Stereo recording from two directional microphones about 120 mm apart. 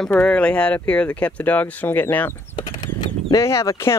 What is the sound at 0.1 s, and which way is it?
Speech, 10° left (ahead or behind).